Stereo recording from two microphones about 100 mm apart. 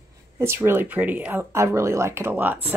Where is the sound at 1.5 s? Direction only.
30° right (ahead or behind).